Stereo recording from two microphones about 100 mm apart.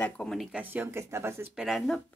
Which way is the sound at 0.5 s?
20° right (ahead or behind).